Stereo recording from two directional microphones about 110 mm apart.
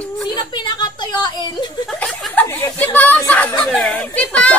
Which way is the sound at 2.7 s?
15° left (ahead or behind).